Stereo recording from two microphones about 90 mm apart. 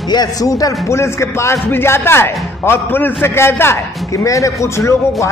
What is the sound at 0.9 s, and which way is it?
A man's voice, 30° left (ahead or behind).